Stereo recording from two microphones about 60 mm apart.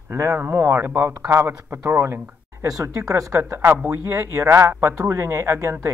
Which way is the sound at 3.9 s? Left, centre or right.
Right.